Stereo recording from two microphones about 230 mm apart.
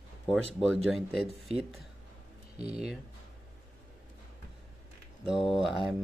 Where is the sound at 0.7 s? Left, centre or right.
Centre.